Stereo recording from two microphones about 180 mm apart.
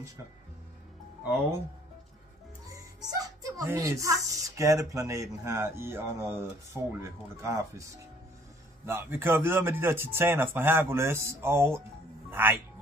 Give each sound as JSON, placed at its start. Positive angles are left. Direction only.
{"t": 2.7, "sound": "speech", "side_deg": -20}
{"t": 8.8, "sound": "speech", "side_deg": -15}